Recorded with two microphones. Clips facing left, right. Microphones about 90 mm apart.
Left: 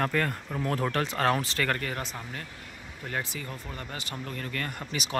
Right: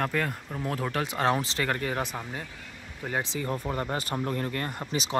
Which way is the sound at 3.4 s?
35° right (ahead or behind).